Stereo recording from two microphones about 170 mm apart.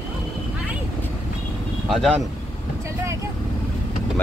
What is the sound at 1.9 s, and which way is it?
Speech, centre (ahead or behind).